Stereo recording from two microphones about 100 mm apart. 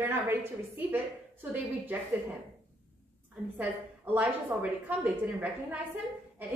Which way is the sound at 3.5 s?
15° right (ahead or behind).